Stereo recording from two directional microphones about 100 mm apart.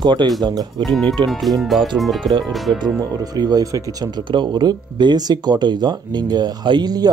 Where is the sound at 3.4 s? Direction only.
40° right (ahead or behind).